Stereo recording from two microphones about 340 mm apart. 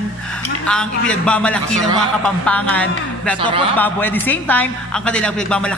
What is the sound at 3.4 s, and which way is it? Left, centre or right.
Speech, centre.